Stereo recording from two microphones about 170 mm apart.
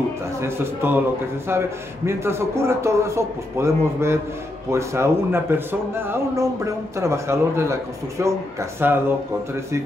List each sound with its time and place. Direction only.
0.4 s speech: 15° right (ahead or behind)
2.0 s speech: 15° right (ahead or behind)